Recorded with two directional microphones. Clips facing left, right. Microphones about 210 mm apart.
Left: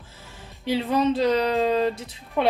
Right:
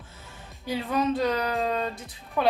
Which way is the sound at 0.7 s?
25° left (ahead or behind).